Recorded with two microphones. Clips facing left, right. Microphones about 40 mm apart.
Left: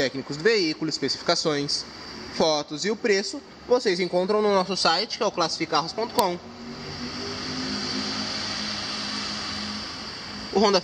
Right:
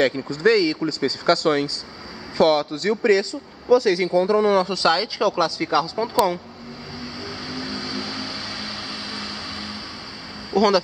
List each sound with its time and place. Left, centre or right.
0.3 s speech: right
3.7 s speech: centre
7.0 s vehicle: centre
10.5 s a sound: centre